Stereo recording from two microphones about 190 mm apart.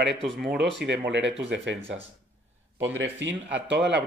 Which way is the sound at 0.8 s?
60° right (ahead or behind).